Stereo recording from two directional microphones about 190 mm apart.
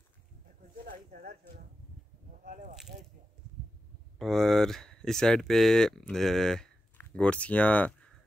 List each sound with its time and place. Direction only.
0.8 s speech: 45° right (ahead or behind)
2.4 s speech: 45° right (ahead or behind)
4.2 s speech: centre (ahead or behind)